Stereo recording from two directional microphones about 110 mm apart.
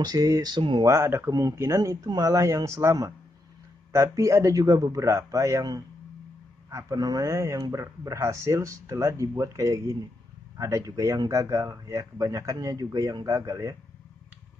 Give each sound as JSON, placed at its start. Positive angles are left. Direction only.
{"t": 0.0, "sound": "speech", "side_deg": -35}
{"t": 0.8, "sound": "speech", "side_deg": -25}